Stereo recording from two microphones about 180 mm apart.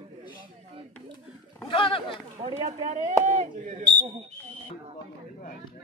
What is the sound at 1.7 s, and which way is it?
Speech, 30° left (ahead or behind).